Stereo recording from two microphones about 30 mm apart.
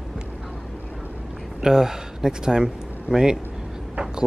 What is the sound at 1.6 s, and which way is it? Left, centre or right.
Speech, centre.